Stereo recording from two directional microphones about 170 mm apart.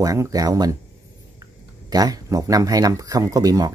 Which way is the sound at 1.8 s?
20° right (ahead or behind).